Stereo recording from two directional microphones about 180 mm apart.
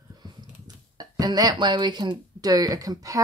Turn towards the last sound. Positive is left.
turn(degrees=-20)  # may be behind; listen again after turning